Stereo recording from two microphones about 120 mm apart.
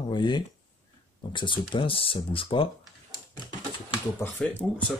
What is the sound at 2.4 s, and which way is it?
Typing, 40° left (ahead or behind).